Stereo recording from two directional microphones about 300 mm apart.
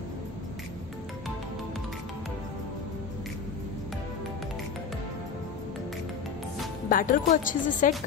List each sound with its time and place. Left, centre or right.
6.9 s speech: left